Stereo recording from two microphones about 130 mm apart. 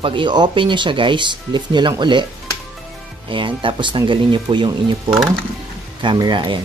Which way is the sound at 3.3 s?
40° right (ahead or behind).